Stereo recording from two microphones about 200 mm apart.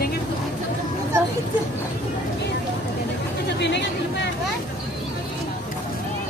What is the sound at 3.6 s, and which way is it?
Chatter, 60° left (ahead or behind).